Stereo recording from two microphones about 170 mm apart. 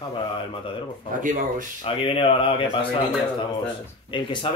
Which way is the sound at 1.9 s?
30° left (ahead or behind).